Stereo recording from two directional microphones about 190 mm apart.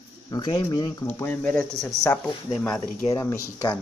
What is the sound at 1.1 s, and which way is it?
Speech, 10° left (ahead or behind).